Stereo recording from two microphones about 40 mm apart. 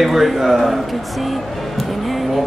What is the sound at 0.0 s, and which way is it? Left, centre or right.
Speech, centre.